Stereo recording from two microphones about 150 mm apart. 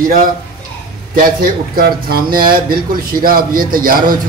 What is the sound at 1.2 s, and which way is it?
Speech, 85° right.